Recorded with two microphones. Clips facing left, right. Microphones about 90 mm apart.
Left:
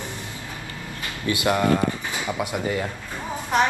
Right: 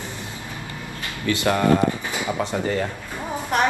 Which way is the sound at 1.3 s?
15° left (ahead or behind).